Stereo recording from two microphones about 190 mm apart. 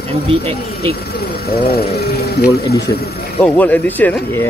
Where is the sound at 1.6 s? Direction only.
55° left (ahead or behind).